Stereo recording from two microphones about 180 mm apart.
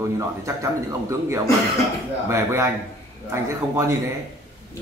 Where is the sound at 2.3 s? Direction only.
15° right (ahead or behind).